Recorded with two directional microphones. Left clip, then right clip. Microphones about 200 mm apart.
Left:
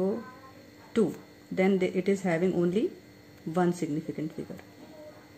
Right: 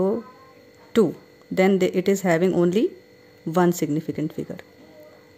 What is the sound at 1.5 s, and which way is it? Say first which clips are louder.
Speech: right 7 dB; 50° right (ahead or behind).